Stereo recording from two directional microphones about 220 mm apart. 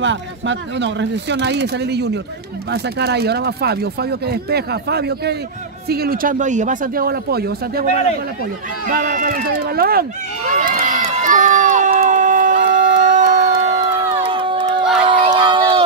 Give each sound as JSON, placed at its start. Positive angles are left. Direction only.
{"t": 0.0, "sound": "speech", "side_deg": -55}
{"t": 8.8, "sound": "a sound", "side_deg": -40}
{"t": 15.0, "sound": "crowd", "side_deg": -25}